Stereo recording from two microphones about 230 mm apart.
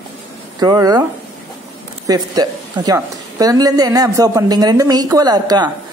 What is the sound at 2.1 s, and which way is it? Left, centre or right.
A woman's voice, centre.